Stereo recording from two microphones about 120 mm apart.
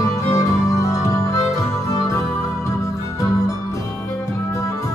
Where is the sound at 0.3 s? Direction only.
25° left (ahead or behind).